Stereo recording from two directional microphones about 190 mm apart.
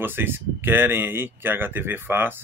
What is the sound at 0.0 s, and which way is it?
Speech, 10° right (ahead or behind).